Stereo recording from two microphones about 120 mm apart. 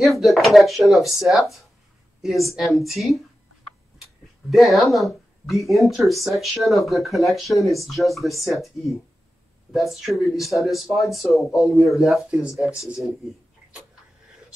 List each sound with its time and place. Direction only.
0.0 s speech: centre (ahead or behind)